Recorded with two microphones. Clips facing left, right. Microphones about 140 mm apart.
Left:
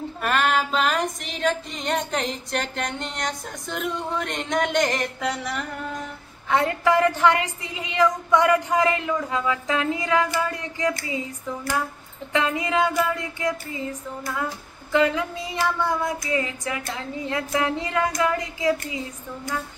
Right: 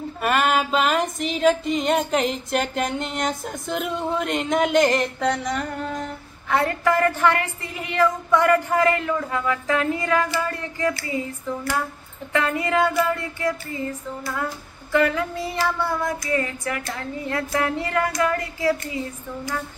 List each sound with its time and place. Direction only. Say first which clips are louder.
0.2 s a sound: right 2 dB; 5° right (ahead or behind)
6.5 s a woman's voice: even; 20° left (ahead or behind)
12.3 s a woman's voice: right 1 dB; 15° left (ahead or behind)